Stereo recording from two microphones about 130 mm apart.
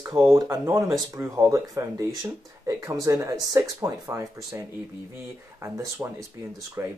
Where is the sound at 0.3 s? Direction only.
20° right (ahead or behind).